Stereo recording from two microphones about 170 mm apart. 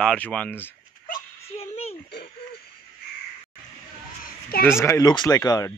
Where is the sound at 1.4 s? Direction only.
35° left (ahead or behind).